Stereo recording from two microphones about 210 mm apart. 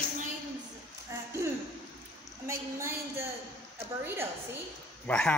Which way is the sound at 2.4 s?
15° right (ahead or behind).